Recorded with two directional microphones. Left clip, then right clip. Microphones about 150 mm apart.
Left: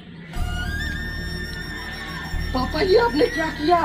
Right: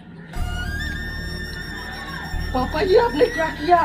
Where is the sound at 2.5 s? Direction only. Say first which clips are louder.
Right 1 dB; centre (ahead or behind).